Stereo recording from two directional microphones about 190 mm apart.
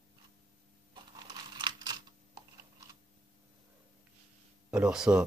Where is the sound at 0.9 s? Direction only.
20° right (ahead or behind).